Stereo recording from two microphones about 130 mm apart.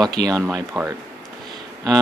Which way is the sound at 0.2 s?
55° left (ahead or behind).